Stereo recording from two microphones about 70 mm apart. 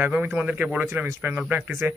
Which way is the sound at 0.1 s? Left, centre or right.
Right.